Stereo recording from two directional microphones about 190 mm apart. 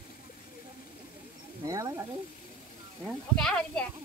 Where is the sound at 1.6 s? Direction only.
15° right (ahead or behind).